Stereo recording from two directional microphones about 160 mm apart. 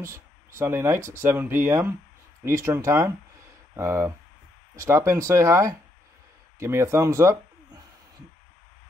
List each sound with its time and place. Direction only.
0.0 s speech: 15° right (ahead or behind)